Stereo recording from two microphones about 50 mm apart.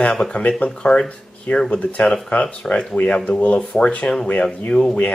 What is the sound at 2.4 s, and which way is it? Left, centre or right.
Speech, centre.